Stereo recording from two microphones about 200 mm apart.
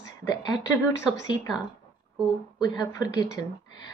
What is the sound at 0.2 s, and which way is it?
Speech, 20° left (ahead or behind).